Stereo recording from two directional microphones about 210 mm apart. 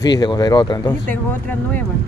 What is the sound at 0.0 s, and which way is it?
Speech, 20° left (ahead or behind).